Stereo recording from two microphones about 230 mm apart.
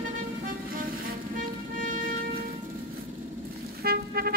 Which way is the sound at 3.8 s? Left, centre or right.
Right.